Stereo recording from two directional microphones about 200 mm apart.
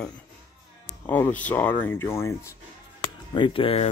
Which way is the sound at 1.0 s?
10° left (ahead or behind).